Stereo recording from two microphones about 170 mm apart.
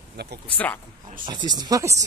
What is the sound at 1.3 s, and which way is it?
Speech, 25° right (ahead or behind).